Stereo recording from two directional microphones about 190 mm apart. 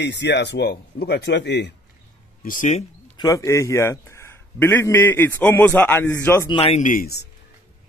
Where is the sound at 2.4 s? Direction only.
45° left (ahead or behind).